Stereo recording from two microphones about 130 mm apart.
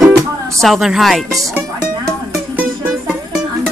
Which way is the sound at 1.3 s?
25° right (ahead or behind).